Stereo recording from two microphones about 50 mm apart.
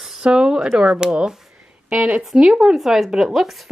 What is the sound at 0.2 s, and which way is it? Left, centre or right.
A woman's voice, centre.